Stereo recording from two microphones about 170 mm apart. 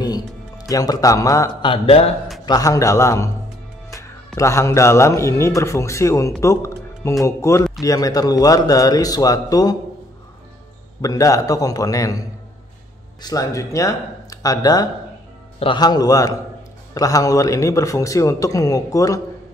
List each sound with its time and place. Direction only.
0.0 s music: 20° left (ahead or behind)
1.7 s speech: 35° left (ahead or behind)
2.4 s a man's voice: 20° left (ahead or behind)
4.4 s speech: 15° left (ahead or behind)
6.4 s music: 15° left (ahead or behind)
7.2 s a man's voice: 15° left (ahead or behind)
11.0 s a man's voice: 20° left (ahead or behind)